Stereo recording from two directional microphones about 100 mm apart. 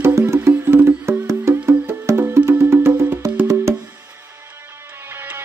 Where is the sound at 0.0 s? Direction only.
25° right (ahead or behind).